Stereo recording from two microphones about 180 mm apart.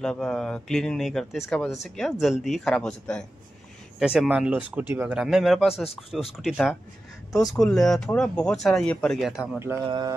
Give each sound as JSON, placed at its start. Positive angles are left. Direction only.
{"t": 0.0, "sound": "speech", "side_deg": 5}
{"t": 9.8, "sound": "mantra", "side_deg": -25}